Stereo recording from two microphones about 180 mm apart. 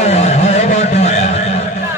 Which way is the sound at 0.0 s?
40° left (ahead or behind).